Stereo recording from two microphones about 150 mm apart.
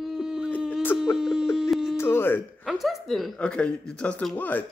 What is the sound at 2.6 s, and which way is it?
A woman's voice, centre (ahead or behind).